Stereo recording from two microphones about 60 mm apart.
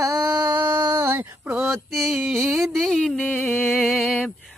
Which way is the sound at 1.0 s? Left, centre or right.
Right.